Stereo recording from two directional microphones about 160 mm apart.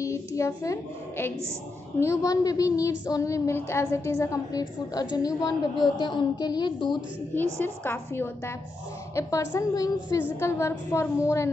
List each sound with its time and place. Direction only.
0.0 s a child's voice: 20° left (ahead or behind)
2.0 s child singing: 20° left (ahead or behind)
7.6 s a woman's voice: 10° left (ahead or behind)
9.1 s child singing: 20° left (ahead or behind)
10.4 s a woman's voice: 20° left (ahead or behind)